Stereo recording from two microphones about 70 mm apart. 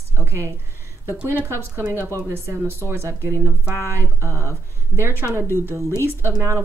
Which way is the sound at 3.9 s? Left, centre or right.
Right.